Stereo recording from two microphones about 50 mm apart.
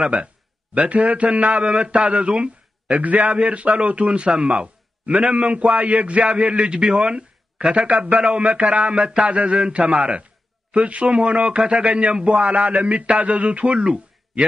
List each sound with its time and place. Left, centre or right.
0.0 s a man's voice: right